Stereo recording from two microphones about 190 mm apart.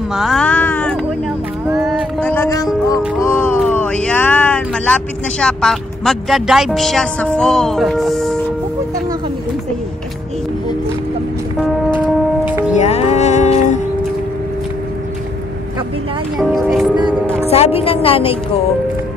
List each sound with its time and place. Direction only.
0.1 s a sound: centre (ahead or behind)
1.8 s music: centre (ahead or behind); by 2.7 s 15° left (ahead or behind)
3.2 s speech: 15° left (ahead or behind)
12.7 s music: 35° left (ahead or behind)
16.3 s music: centre (ahead or behind)
17.5 s a woman's voice: 35° left (ahead or behind)